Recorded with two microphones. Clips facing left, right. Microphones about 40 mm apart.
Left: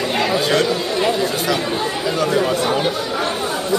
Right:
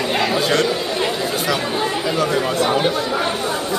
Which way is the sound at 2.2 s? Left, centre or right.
Centre.